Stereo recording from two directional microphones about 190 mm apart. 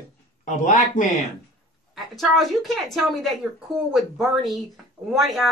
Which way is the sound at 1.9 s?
Centre (ahead or behind).